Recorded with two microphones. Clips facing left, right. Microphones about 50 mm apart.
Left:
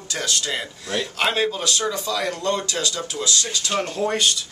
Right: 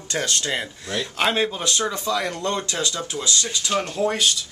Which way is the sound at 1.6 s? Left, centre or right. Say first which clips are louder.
Even; right.